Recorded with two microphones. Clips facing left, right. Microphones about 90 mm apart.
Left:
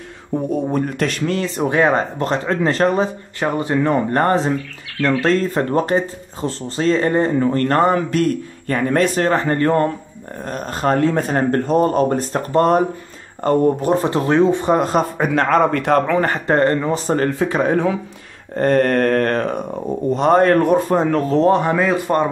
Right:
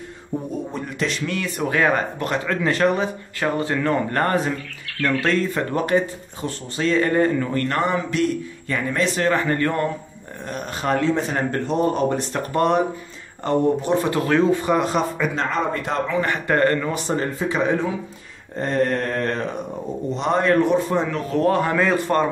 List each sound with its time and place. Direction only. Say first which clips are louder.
0.7 s speech: left 6 dB; 55° left (ahead or behind)
1.3 s speech: left 5 dB; 30° left (ahead or behind)
3.3 s speech: left 4 dB; 20° left (ahead or behind)
7.5 s speech: left 6 dB; 40° left (ahead or behind); by 16.3 s 60° left (ahead or behind)
16.3 s speech: left 3 dB; 30° left (ahead or behind)
17.1 s mantra: left 5 dB; 55° left (ahead or behind)
20.2 s speech: left 5 dB; 50° left (ahead or behind)
21.4 s speech: left 3 dB; 20° left (ahead or behind)
21.7 s a man's voice: left 2 dB; 10° left (ahead or behind)